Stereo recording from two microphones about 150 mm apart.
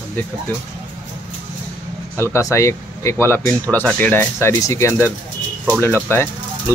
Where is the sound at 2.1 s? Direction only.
15° left (ahead or behind).